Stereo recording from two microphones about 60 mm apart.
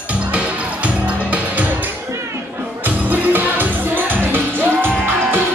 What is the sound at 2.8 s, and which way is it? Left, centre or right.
Music, right.